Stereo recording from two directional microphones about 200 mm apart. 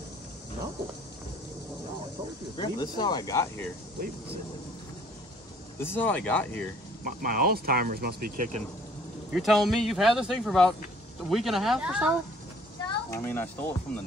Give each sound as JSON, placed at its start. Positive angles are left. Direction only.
{"t": 2.5, "sound": "speech", "side_deg": 20}
{"t": 5.8, "sound": "speech", "side_deg": 10}
{"t": 7.1, "sound": "speech", "side_deg": -45}
{"t": 9.3, "sound": "speech", "side_deg": 0}
{"t": 12.8, "sound": "speech", "side_deg": 15}